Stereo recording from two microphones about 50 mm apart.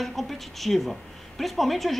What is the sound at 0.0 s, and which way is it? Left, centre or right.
Speech, centre.